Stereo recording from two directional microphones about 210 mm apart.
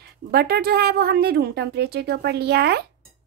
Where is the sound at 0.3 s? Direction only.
50° right (ahead or behind).